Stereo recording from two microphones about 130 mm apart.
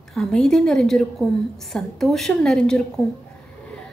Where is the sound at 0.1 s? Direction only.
5° left (ahead or behind).